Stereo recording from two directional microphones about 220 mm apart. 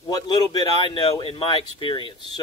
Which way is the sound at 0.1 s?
15° left (ahead or behind).